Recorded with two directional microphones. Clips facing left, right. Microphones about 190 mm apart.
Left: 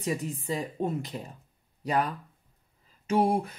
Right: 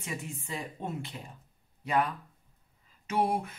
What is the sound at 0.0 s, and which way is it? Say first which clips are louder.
Speech: left 8 dB; 40° left (ahead or behind).